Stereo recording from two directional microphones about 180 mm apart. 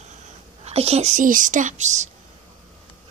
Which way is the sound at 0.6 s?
35° right (ahead or behind).